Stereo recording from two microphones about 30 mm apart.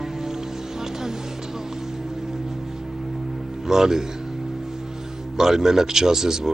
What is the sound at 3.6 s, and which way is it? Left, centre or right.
Speech, centre.